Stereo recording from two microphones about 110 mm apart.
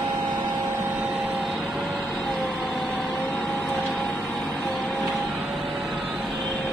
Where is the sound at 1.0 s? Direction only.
15° right (ahead or behind).